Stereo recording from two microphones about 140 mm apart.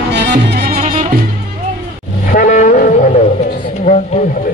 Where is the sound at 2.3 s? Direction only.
75° left (ahead or behind); by 4.2 s 55° left (ahead or behind).